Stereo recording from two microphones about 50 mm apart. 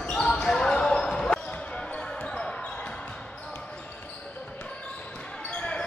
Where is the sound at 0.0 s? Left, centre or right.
Left.